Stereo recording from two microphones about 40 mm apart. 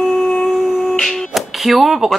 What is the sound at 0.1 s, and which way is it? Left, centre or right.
Humming, centre.